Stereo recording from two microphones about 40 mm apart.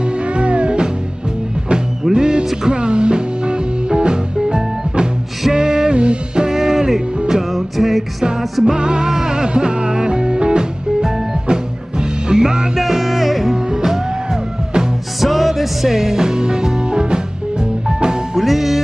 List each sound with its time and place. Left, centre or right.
0.3 s music: right
2.1 s music: centre
6.5 s music: centre
8.6 s music: right
12.7 s music: centre
13.7 s music: centre
15.1 s music: centre
18.3 s music: centre